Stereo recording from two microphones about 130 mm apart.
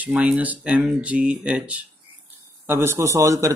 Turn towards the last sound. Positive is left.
turn(degrees=-25)  # may be behind; listen again after turning